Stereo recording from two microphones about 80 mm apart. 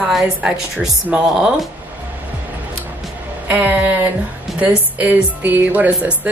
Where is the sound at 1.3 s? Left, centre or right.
Centre.